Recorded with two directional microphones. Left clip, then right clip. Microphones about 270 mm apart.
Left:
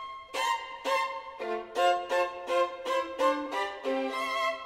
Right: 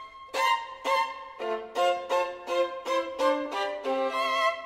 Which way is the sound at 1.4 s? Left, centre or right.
Centre.